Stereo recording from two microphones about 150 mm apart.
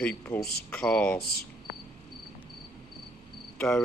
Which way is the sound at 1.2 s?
90° left.